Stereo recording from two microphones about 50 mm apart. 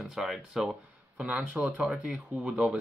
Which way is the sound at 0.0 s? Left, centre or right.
Centre.